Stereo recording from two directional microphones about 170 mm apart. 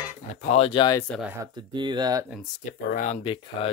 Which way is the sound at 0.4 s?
35° left (ahead or behind).